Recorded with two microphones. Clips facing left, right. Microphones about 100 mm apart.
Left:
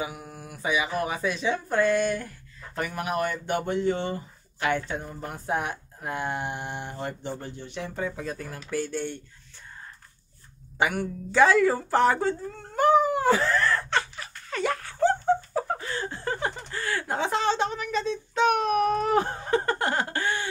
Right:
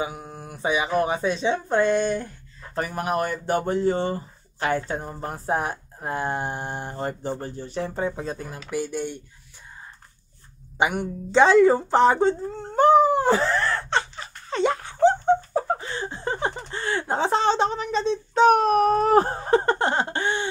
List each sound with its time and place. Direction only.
0.0 s speech: 30° right (ahead or behind)
8.6 s speech: 15° right (ahead or behind)
10.8 s a sound: 20° right (ahead or behind)